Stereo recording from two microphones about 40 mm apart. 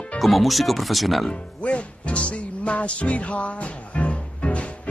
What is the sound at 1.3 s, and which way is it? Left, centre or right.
Music, left.